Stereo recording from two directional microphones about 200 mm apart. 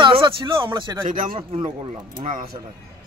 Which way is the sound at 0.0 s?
25° right (ahead or behind).